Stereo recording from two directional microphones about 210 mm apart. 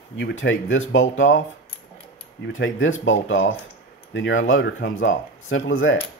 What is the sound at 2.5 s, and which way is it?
Speech, 65° left (ahead or behind).